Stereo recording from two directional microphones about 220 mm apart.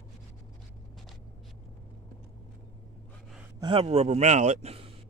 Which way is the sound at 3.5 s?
25° right (ahead or behind).